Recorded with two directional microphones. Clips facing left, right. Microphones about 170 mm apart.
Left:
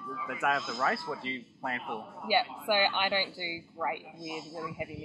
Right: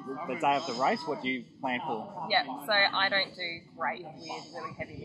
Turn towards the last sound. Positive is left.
turn(degrees=15)  # may be behind; listen again after turning